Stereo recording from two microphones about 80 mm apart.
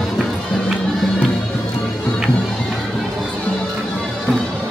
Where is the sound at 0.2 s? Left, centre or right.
Centre.